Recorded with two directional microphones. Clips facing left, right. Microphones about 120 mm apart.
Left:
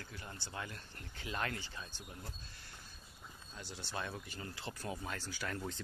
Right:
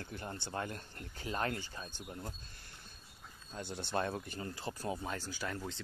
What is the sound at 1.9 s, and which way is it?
Speech, 15° right (ahead or behind).